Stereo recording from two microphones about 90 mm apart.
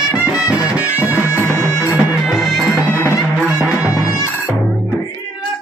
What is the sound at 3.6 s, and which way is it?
Music, 35° left (ahead or behind).